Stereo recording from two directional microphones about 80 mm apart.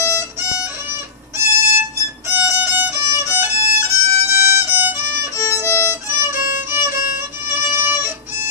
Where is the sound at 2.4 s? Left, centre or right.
Right.